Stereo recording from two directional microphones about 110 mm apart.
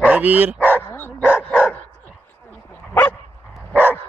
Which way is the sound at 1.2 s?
10° right (ahead or behind).